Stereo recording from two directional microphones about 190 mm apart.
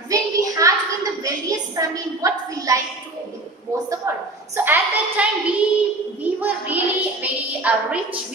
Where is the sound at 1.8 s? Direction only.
15° right (ahead or behind).